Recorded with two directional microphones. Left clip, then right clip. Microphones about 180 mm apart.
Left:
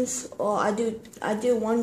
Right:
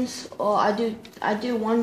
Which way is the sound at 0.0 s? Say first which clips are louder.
Right 1 dB; 35° left (ahead or behind).